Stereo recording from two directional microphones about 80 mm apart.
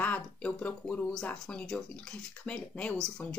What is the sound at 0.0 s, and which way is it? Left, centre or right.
Speech, centre.